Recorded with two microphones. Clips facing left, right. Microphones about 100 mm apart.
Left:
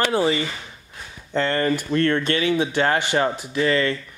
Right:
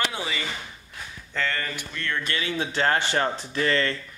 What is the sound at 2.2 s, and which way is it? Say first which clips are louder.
Speech: left 8 dB; 30° left (ahead or behind).